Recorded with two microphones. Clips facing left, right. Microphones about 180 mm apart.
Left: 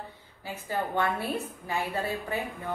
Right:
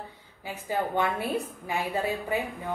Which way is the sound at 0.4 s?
15° right (ahead or behind).